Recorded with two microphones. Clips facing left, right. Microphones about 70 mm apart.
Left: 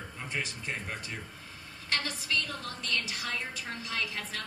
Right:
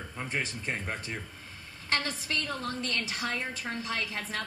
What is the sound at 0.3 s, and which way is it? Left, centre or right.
A woman's voice, right.